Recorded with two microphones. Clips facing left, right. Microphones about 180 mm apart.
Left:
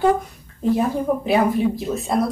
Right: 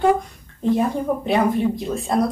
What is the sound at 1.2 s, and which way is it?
Speech, 5° left (ahead or behind).